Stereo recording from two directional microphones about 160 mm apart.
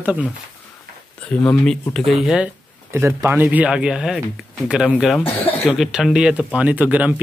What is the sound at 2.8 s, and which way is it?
Speech, 15° right (ahead or behind).